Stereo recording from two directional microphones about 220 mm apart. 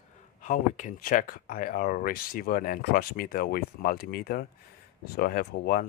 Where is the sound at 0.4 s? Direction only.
35° left (ahead or behind).